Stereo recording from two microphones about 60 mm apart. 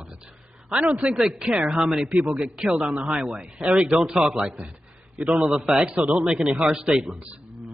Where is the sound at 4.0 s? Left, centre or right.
Centre.